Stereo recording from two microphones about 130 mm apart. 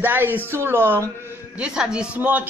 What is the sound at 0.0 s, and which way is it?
Speech, 15° right (ahead or behind).